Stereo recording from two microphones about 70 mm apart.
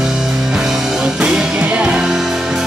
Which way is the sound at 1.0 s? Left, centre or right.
Centre.